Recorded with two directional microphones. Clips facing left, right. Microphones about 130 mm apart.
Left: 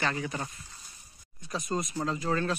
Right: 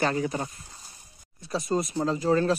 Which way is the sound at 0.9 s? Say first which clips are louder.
Right 3 dB; 30° right (ahead or behind).